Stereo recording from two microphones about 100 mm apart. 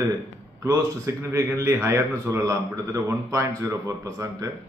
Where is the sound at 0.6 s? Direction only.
30° right (ahead or behind).